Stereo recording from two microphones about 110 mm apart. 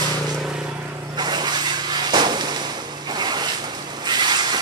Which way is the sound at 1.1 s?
40° right (ahead or behind).